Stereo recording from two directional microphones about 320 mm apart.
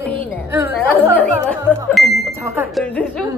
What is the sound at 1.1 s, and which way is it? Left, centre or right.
A woman's voice, centre.